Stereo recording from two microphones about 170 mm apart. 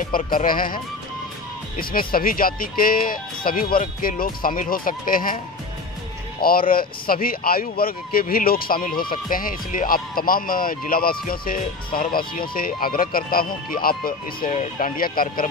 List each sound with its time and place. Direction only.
0.0 s speech: 55° left (ahead or behind)
1.8 s speech: 60° left (ahead or behind)
6.4 s speech: 60° left (ahead or behind)
14.5 s speech: 45° left (ahead or behind)